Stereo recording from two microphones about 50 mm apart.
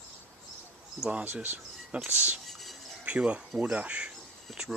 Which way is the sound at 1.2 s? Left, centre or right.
Right.